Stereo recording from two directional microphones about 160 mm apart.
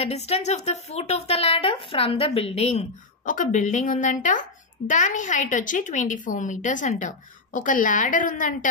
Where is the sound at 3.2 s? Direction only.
55° left (ahead or behind).